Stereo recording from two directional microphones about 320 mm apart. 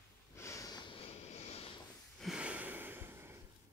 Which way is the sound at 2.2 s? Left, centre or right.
Centre.